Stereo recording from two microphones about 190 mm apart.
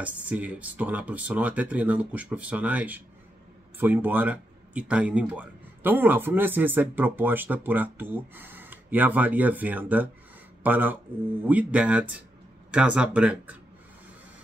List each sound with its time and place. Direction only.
0.0 s speech: 5° right (ahead or behind)